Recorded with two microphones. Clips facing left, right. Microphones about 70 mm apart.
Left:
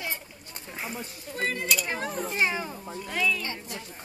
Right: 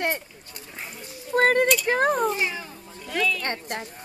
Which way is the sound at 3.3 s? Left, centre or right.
Right.